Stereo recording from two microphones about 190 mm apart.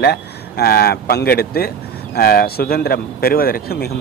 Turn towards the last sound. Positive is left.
turn(degrees=55)  # may be behind; listen again after turning